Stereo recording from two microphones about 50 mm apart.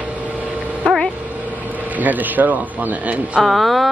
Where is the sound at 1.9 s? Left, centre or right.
Right.